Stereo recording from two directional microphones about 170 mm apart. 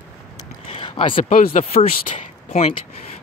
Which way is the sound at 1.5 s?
35° left (ahead or behind).